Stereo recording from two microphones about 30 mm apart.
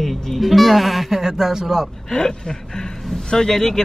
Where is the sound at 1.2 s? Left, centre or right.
Centre.